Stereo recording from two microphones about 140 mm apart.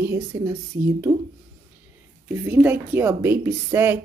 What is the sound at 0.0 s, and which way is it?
Speech, 15° right (ahead or behind).